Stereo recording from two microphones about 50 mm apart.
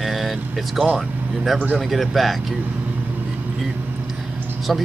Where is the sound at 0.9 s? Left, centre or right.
Centre.